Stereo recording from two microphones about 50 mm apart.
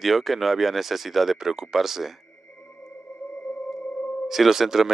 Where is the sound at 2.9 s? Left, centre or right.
Left.